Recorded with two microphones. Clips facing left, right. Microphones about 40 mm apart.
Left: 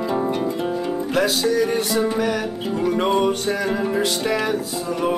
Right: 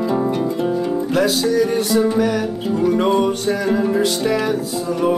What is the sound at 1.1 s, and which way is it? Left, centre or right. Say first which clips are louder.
Music: right 2 dB; left.